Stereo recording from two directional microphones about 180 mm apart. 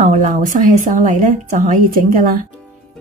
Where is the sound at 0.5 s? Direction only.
45° right (ahead or behind).